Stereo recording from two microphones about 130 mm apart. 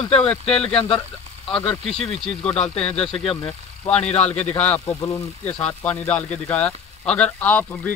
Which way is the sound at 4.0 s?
60° left (ahead or behind).